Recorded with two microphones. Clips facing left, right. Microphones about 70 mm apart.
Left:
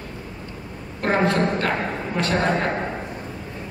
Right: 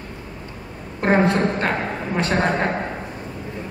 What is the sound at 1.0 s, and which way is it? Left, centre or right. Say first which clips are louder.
A woman's voice: right 2 dB; right.